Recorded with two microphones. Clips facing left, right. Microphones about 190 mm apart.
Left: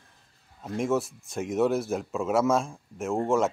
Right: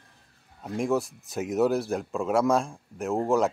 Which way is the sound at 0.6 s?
Centre (ahead or behind).